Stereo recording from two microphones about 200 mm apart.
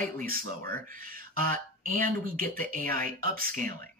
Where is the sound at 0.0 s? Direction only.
45° right (ahead or behind).